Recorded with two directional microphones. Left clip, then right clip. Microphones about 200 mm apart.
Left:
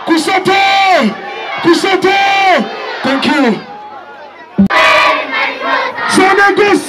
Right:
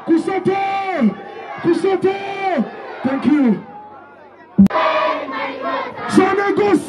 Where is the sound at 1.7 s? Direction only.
40° left (ahead or behind).